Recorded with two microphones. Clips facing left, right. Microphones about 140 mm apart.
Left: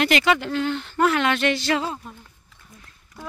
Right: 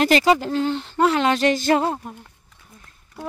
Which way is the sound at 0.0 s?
35° right (ahead or behind).